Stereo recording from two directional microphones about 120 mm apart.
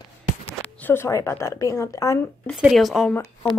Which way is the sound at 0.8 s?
20° left (ahead or behind).